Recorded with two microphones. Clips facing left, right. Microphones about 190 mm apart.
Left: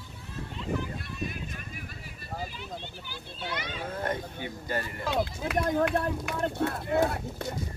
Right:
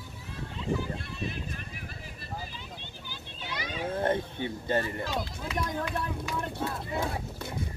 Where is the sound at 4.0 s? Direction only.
25° right (ahead or behind).